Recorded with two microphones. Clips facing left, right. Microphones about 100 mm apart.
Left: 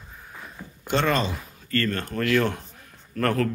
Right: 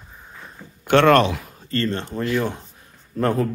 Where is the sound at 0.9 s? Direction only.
70° right (ahead or behind).